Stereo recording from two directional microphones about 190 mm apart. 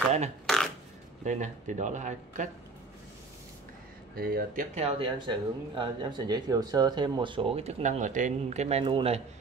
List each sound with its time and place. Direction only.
1.2 s speech: 40° right (ahead or behind)
4.1 s speech: 50° right (ahead or behind)
4.7 s speech: 30° right (ahead or behind)